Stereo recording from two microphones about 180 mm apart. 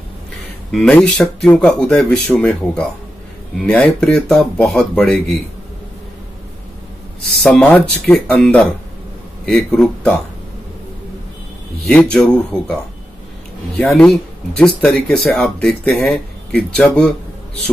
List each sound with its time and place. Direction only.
0.7 s speech: 5° left (ahead or behind)
7.4 s speech: 5° left (ahead or behind)
11.8 s speech: 5° left (ahead or behind)
13.7 s speech: 5° left (ahead or behind)